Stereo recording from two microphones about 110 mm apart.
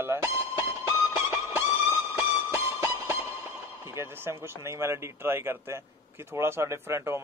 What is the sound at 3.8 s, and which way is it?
Speech, 25° right (ahead or behind).